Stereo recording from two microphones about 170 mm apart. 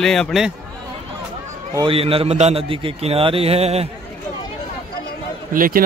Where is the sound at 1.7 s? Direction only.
30° right (ahead or behind).